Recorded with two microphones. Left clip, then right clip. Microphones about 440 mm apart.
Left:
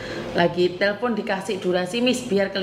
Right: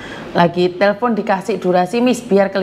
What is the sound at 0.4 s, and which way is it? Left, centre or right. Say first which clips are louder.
A woman's voice: right 6 dB; right.